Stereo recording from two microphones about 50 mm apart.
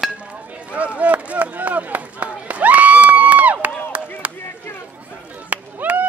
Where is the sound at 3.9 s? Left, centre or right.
Right.